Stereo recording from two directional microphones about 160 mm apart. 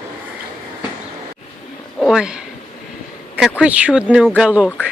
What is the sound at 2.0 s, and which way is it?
Speech, 5° right (ahead or behind).